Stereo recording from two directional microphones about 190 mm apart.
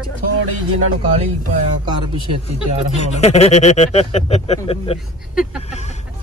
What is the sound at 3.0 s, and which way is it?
Speech, 35° left (ahead or behind).